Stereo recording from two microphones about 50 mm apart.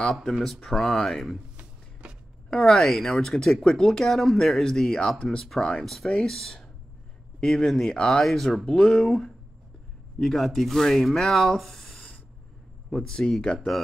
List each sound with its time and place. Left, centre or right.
0.1 s speech: centre
1.6 s a sound: right
2.5 s speech: centre
8.2 s speech: centre
8.6 s speech: centre